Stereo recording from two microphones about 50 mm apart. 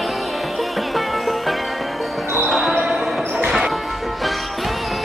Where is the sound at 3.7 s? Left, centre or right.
Centre.